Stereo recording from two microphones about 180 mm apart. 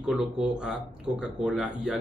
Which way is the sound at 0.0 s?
5° right (ahead or behind).